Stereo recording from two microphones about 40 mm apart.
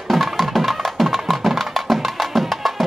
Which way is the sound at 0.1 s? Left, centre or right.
Centre.